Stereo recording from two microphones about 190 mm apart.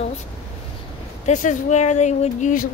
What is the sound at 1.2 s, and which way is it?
Speech, 40° left (ahead or behind).